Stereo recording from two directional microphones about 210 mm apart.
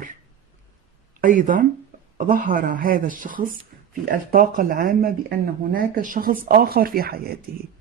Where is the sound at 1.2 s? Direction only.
40° right (ahead or behind).